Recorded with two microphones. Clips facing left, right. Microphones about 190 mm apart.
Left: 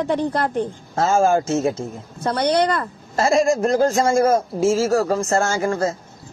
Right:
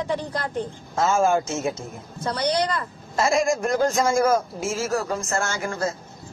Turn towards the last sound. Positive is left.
turn(degrees=30)  # may be behind; listen again after turning